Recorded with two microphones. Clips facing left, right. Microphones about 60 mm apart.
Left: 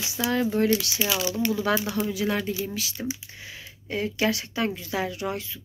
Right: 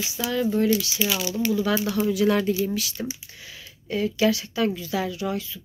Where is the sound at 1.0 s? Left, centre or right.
Left.